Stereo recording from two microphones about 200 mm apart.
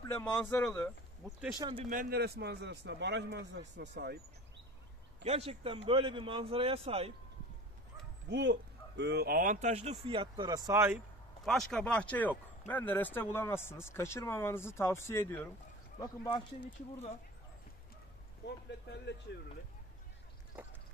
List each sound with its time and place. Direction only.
0.0 s speech: 15° left (ahead or behind)
1.6 s a man's voice: 25° right (ahead or behind)
1.9 s a man's voice: 45° right (ahead or behind)
5.2 s a man's voice: 30° right (ahead or behind)
8.3 s a man's voice: 60° right (ahead or behind); by 11.0 s 15° right (ahead or behind)
11.4 s speech: centre (ahead or behind); by 16.4 s 20° left (ahead or behind)
18.4 s speech: 55° left (ahead or behind)